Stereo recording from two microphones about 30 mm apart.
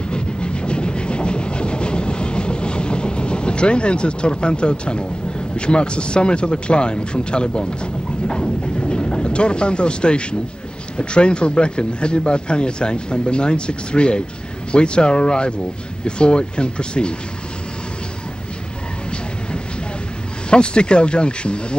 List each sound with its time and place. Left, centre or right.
0.1 s train: left
5.6 s speech: left
20.4 s speech: left